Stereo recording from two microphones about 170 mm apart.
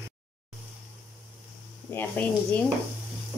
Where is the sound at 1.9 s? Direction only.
10° left (ahead or behind).